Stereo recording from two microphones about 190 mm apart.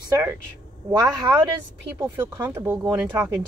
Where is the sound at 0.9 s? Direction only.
20° right (ahead or behind).